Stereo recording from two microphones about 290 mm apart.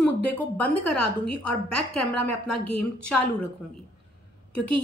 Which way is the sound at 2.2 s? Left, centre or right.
Left.